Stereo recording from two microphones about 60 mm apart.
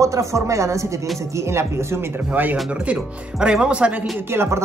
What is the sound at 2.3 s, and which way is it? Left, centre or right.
Speech, right.